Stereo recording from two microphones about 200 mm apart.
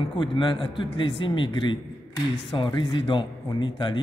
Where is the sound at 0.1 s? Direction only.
25° left (ahead or behind).